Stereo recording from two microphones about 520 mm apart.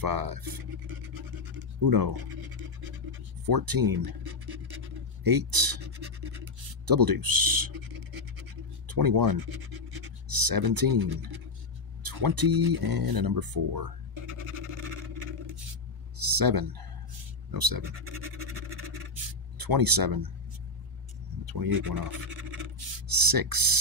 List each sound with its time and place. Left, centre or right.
0.0 s speech: right
1.9 s speech: right
3.4 s scratch: right
10.2 s speech: right
16.3 s speech: right
19.1 s a sound: right
21.5 s speech: right